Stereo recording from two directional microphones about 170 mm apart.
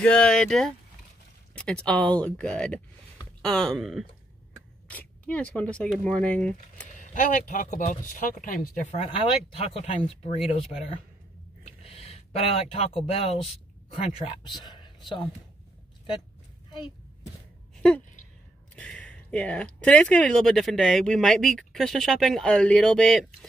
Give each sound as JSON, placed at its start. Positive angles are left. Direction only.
{"t": 0.0, "sound": "speech", "side_deg": 5}
{"t": 7.0, "sound": "speech", "side_deg": 50}
{"t": 11.8, "sound": "speech", "side_deg": 35}
{"t": 17.7, "sound": "a sound", "side_deg": 5}
{"t": 18.8, "sound": "speech", "side_deg": 5}